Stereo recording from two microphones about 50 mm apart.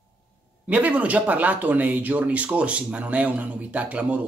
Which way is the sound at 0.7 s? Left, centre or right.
Right.